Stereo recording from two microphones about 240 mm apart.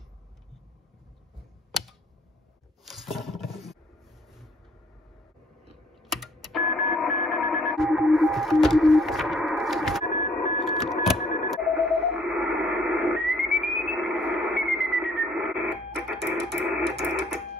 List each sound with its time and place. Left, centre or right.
1.7 s typewriter: centre
2.8 s roaring cats: centre
6.0 s a sound: centre
10.1 s sidetone: left
10.6 s a sound: centre
11.5 s radio: centre